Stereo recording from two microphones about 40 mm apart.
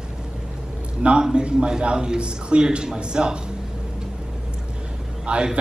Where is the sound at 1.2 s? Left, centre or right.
Right.